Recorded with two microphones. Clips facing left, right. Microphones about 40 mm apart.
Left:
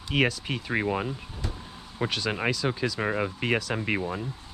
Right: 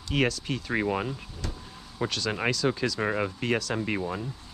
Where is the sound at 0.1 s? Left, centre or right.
Centre.